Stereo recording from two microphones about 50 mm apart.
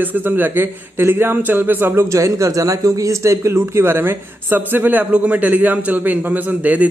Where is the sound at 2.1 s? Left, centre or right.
Right.